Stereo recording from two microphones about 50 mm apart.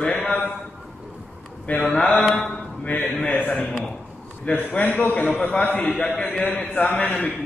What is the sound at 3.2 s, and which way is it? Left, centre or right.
A man's voice, left.